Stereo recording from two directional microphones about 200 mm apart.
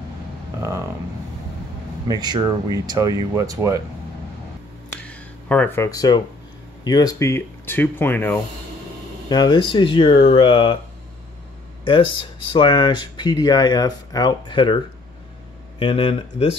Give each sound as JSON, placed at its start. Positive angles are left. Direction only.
{"t": 0.6, "sound": "speech", "side_deg": -15}
{"t": 2.0, "sound": "speech", "side_deg": -20}
{"t": 5.0, "sound": "a sound", "side_deg": 5}
{"t": 6.8, "sound": "speech", "side_deg": 20}
{"t": 9.3, "sound": "speech", "side_deg": 20}
{"t": 12.5, "sound": "speech", "side_deg": 20}
{"t": 15.8, "sound": "speech", "side_deg": 30}